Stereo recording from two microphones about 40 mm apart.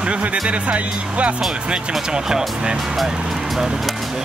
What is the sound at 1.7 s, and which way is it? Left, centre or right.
Speech, centre.